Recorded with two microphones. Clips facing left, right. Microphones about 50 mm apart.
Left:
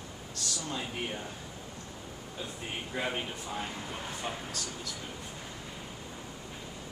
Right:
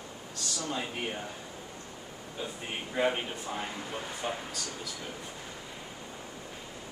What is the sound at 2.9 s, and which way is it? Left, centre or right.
Speech, centre.